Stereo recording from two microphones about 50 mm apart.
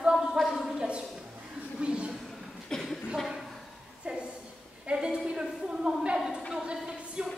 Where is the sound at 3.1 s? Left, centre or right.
Centre.